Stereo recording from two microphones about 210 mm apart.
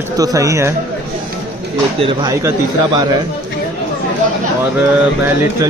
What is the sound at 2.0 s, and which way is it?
Speech, 20° right (ahead or behind).